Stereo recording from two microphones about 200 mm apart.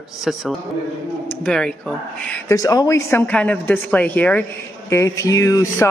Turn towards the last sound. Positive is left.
turn(degrees=15)  # may be behind; listen again after turning